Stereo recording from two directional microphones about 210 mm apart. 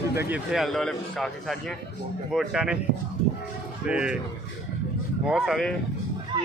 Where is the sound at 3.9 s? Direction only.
5° right (ahead or behind).